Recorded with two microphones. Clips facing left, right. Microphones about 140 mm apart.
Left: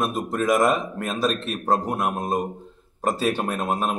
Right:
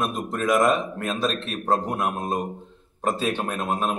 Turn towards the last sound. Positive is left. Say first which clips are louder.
# left 1 dB
turn(degrees=5)  # may be behind; listen again after turning